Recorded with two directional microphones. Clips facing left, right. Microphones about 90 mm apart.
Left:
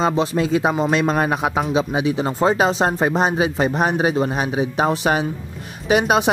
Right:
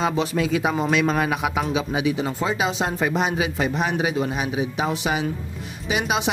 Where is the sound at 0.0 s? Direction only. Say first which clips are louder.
Left 3 dB; 25° left (ahead or behind).